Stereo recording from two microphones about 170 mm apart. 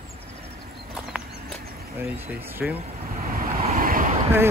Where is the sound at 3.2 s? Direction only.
60° right (ahead or behind).